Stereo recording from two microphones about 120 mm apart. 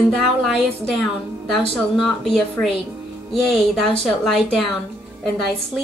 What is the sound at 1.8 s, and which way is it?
Speech, centre (ahead or behind).